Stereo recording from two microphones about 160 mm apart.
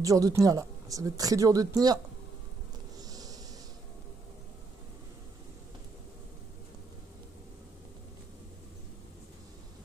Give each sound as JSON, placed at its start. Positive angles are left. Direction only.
{"t": 0.0, "sound": "speech", "side_deg": -20}
{"t": 3.0, "sound": "bee", "side_deg": -25}